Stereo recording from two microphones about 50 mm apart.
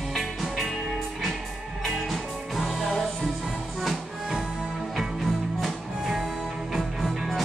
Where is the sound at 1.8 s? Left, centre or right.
Centre.